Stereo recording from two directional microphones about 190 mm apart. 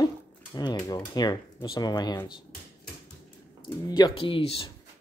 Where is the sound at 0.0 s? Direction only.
20° left (ahead or behind).